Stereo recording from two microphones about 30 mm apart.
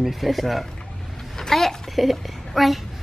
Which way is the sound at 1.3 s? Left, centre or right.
Centre.